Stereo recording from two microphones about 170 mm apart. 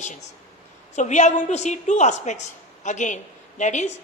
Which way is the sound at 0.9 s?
45° left (ahead or behind).